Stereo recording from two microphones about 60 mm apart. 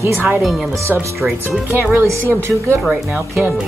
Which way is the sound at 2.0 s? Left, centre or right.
Right.